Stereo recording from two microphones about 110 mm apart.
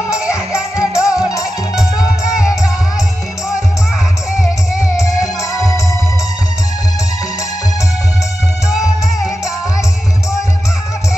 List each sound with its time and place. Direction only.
0.6 s music: 5° right (ahead or behind)
4.7 s music: 30° left (ahead or behind)